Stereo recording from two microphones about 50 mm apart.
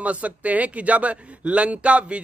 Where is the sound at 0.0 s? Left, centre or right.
Right.